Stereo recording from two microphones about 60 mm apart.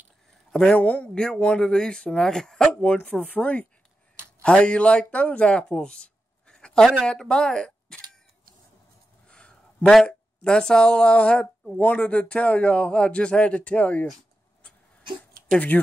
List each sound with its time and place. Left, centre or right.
0.5 s speech: centre
3.1 s speech: left
9.3 s a sound: centre
10.0 s speech: centre
15.7 s speech: left